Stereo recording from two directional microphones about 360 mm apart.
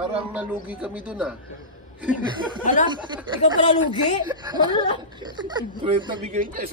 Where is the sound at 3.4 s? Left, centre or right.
Centre.